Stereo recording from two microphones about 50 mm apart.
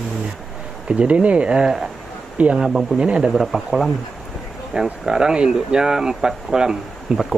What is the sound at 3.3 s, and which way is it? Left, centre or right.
Speech, centre.